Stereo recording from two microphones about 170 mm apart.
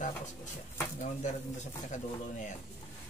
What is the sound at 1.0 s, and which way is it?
Speech, 45° left (ahead or behind).